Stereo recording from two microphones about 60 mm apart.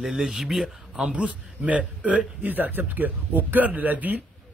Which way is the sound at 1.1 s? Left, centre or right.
Right.